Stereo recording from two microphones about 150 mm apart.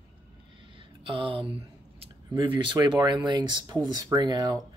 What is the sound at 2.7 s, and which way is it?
Speech, 30° right (ahead or behind).